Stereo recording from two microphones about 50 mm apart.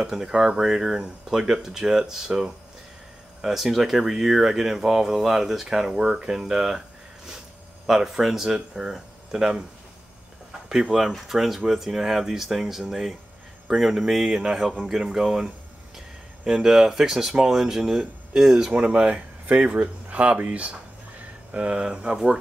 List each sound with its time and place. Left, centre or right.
0.0 s speech: centre
7.8 s speech: centre
10.7 s speech: centre
18.7 s speech: right